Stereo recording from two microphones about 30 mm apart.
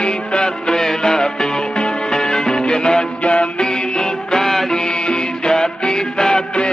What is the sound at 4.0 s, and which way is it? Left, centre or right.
Music, left.